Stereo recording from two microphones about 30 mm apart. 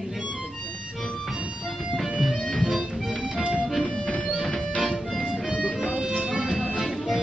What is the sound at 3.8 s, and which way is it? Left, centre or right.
Music, left.